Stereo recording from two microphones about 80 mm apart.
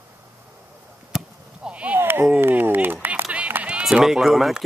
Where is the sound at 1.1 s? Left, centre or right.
Centre.